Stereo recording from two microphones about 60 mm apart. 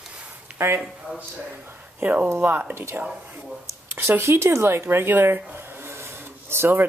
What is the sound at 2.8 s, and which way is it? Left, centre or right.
Speech, right.